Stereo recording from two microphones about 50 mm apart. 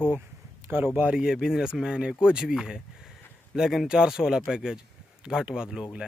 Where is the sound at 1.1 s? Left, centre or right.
Centre.